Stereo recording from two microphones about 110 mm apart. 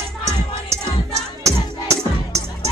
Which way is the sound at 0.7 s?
25° right (ahead or behind).